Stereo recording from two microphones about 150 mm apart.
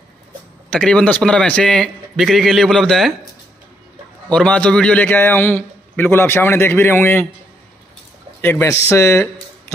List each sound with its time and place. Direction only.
0.7 s a man's voice: 5° left (ahead or behind)
4.3 s a man's voice: 5° left (ahead or behind)
8.4 s a man's voice: 15° left (ahead or behind)